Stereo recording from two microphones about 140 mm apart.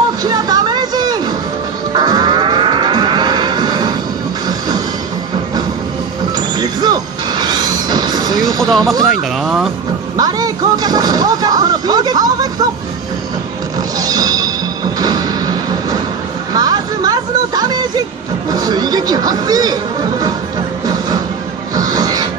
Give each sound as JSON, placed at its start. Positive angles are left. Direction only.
{"t": 0.2, "sound": "a sound", "side_deg": -30}
{"t": 4.5, "sound": "music", "side_deg": -30}
{"t": 6.6, "sound": "music", "side_deg": -30}
{"t": 8.5, "sound": "speech", "side_deg": 0}
{"t": 10.1, "sound": "speech", "side_deg": -30}
{"t": 13.9, "sound": "music", "side_deg": -25}
{"t": 15.0, "sound": "a sound", "side_deg": -25}
{"t": 18.5, "sound": "speech", "side_deg": -30}
{"t": 21.7, "sound": "music", "side_deg": -25}